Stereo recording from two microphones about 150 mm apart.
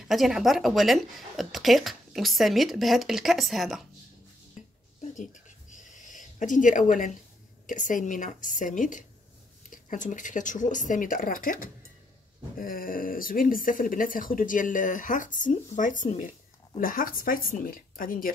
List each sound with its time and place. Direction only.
0.1 s speech: centre (ahead or behind)
5.1 s a sound: 55° left (ahead or behind)
7.6 s speech: 60° left (ahead or behind)